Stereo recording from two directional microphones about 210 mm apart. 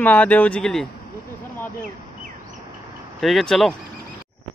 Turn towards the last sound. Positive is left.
turn(degrees=0)  # may be behind; listen again after turning